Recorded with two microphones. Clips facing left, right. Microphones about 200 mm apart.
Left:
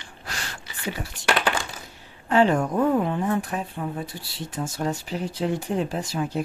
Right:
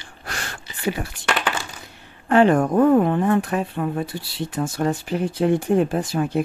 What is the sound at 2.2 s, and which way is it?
Speech, 55° right (ahead or behind).